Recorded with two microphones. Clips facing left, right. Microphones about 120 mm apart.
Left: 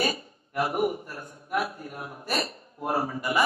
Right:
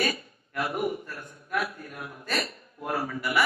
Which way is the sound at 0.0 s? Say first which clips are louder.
Left 1 dB; 30° left (ahead or behind).